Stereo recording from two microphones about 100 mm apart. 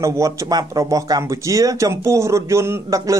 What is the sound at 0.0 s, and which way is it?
Speech, 35° right (ahead or behind).